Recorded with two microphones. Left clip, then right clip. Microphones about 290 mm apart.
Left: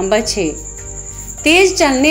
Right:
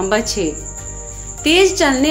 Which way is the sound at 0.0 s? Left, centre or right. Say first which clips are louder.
Left 2 dB; centre.